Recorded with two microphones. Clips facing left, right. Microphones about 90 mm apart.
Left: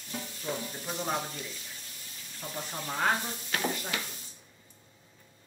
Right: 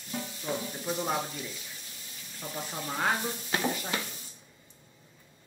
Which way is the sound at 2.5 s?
Centre (ahead or behind).